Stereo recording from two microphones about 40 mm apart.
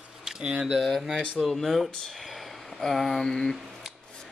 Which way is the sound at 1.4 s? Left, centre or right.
Centre.